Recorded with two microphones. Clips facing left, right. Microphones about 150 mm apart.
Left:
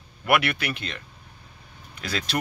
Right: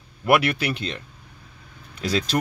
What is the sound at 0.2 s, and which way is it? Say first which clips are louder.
Speech: right 4 dB; 30° right (ahead or behind).